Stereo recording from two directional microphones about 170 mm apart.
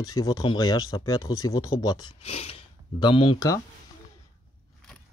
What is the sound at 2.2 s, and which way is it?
Speech, 35° left (ahead or behind).